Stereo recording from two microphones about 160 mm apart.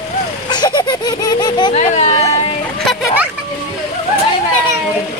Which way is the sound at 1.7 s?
45° left (ahead or behind).